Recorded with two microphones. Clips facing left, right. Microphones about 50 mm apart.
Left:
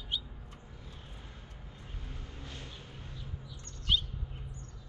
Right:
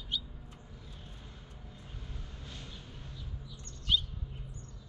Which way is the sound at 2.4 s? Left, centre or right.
Left.